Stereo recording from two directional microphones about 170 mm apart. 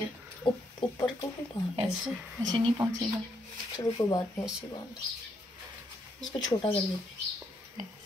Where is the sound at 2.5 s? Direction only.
25° right (ahead or behind).